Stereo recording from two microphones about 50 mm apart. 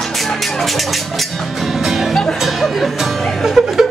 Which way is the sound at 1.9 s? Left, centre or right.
Centre.